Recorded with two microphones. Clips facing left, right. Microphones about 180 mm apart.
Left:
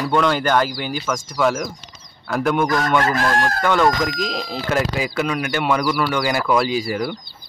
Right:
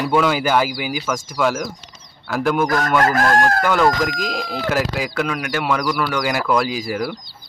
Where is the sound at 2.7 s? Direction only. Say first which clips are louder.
Right 1 dB; 40° right (ahead or behind).